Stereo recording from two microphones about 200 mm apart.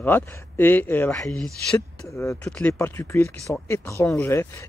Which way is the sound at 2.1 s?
15° left (ahead or behind).